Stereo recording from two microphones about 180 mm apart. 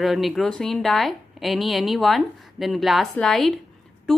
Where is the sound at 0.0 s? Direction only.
Centre (ahead or behind).